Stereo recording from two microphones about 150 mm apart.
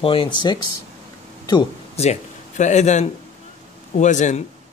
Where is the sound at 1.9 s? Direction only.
50° left (ahead or behind).